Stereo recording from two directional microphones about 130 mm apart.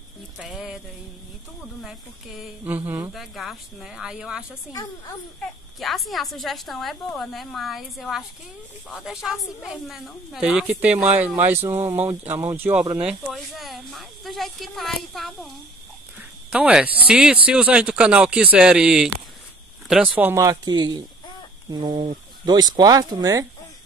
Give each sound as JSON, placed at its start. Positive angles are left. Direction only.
{"t": 0.4, "sound": "a woman's voice", "side_deg": -5}
{"t": 1.8, "sound": "a woman's voice", "side_deg": -5}
{"t": 13.0, "sound": "a woman's voice", "side_deg": 0}
{"t": 16.2, "sound": "cricket", "side_deg": -10}
{"t": 17.1, "sound": "a woman's voice", "side_deg": -5}
{"t": 20.2, "sound": "speech", "side_deg": -15}
{"t": 20.4, "sound": "speech", "side_deg": -30}